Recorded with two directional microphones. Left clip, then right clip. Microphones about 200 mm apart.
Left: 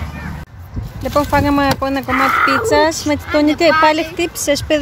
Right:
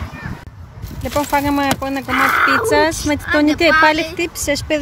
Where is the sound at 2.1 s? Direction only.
35° right (ahead or behind).